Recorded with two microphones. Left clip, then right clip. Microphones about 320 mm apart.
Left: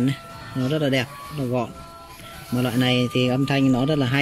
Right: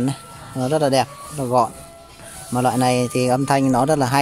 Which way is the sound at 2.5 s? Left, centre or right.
Right.